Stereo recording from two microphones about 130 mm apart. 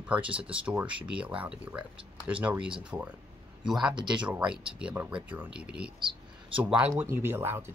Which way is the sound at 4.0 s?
35° right (ahead or behind).